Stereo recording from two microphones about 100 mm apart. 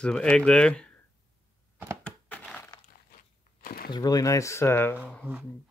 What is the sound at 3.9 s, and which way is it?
Speech, 40° left (ahead or behind).